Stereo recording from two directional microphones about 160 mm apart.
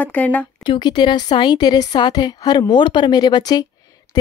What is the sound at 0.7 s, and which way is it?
A woman's voice, 30° left (ahead or behind).